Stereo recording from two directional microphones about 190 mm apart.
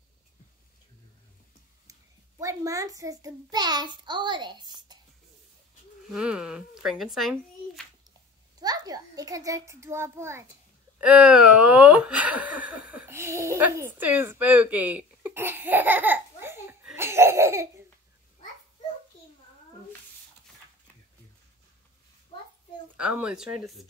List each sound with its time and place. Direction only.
1.9 s a child's voice: 15° right (ahead or behind)
6.0 s a child's voice: 5° right (ahead or behind)
8.5 s a child's voice: 20° right (ahead or behind)
22.9 s a child's voice: 5° right (ahead or behind)